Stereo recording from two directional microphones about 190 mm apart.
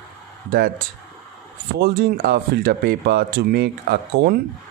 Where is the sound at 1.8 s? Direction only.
55° right (ahead or behind).